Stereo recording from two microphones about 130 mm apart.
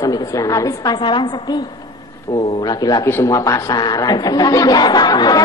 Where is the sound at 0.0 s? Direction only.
30° left (ahead or behind).